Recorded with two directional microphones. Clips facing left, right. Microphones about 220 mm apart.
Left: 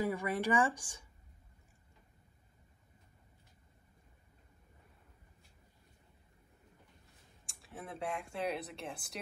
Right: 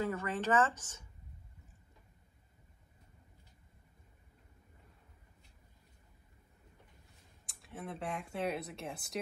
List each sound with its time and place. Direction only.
0.0 s speech: 10° left (ahead or behind)
7.4 s speech: centre (ahead or behind)